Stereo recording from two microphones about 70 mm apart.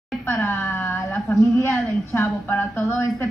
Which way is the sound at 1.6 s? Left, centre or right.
Left.